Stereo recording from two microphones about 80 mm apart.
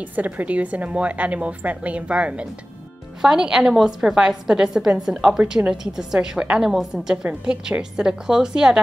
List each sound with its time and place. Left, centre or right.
0.1 s a woman's voice: centre